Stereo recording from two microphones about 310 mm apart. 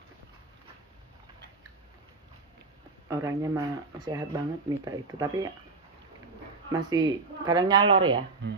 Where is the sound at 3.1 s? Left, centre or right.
Centre.